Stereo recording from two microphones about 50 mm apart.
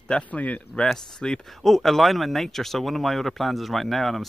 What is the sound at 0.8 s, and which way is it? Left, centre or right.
Speech, centre.